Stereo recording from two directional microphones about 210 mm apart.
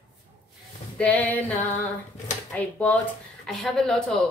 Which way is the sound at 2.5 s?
5° left (ahead or behind).